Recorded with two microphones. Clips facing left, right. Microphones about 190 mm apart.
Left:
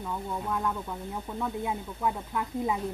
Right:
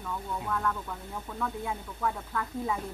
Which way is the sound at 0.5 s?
20° left (ahead or behind).